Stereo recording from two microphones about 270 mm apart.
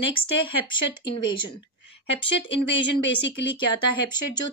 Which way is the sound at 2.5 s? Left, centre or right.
Centre.